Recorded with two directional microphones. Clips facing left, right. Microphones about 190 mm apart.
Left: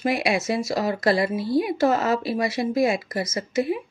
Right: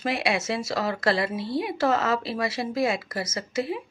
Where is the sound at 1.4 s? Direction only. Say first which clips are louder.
Left 5 dB; 25° right (ahead or behind).